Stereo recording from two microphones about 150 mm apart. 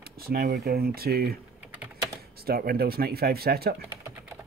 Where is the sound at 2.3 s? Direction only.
90° right.